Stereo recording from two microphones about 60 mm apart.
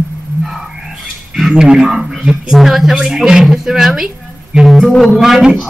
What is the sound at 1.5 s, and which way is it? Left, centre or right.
Speech, centre.